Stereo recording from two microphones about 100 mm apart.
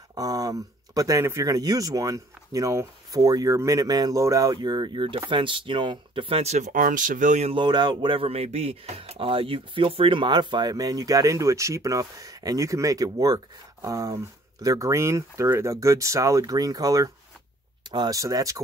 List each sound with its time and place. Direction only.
0.1 s speech: 40° right (ahead or behind); by 6.6 s 90° right
7.6 s speech: 50° right (ahead or behind); by 18.6 s 35° right (ahead or behind)